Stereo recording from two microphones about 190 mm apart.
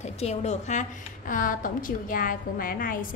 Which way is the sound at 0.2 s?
35° left (ahead or behind).